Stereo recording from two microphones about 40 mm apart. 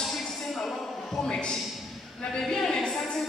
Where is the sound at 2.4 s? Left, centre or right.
Centre.